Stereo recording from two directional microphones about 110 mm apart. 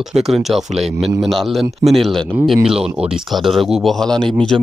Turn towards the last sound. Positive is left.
turn(degrees=5)  # may be behind; listen again after turning